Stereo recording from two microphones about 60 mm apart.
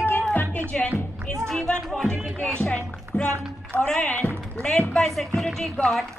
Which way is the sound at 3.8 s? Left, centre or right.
Centre.